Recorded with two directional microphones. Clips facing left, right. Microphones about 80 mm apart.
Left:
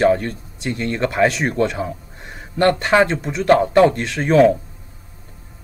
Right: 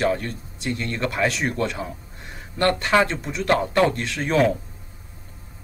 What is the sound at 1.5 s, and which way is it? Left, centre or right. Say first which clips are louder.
Speech: left 6 dB; centre.